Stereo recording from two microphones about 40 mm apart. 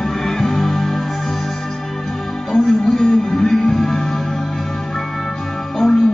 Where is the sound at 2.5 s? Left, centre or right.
Centre.